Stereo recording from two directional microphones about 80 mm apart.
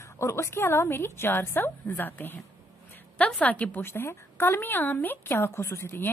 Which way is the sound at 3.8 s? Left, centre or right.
Left.